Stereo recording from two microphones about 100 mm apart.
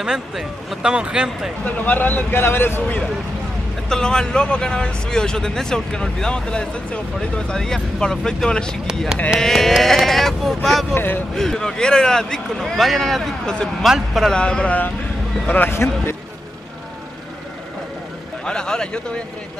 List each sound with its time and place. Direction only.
0.0 s speech: 5° right (ahead or behind)
1.6 s a man's voice: 15° left (ahead or behind)
3.9 s a man's voice: 10° left (ahead or behind); by 16.2 s 25° left (ahead or behind)
18.4 s speech: 10° left (ahead or behind)